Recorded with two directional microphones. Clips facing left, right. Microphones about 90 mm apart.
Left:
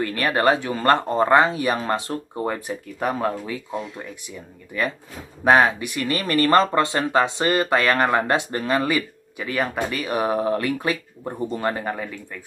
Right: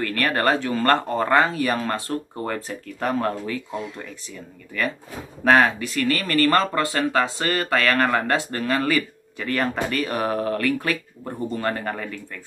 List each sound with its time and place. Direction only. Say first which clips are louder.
0.0 s speech: left 2 dB; 15° left (ahead or behind)